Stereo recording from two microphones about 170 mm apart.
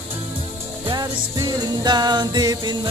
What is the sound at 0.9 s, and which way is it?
Music, 25° right (ahead or behind).